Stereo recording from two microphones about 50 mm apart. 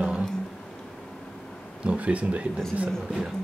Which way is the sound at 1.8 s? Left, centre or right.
Right.